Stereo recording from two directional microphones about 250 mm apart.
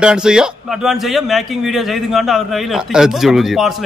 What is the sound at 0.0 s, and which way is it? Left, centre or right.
A man's voice, centre.